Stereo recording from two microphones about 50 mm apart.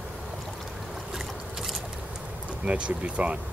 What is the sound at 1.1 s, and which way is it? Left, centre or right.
Boat, centre.